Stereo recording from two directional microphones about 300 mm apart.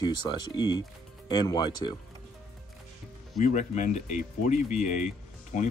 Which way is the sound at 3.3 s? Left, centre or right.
Left.